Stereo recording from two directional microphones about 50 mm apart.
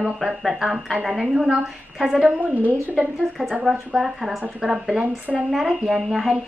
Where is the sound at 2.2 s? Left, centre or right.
Right.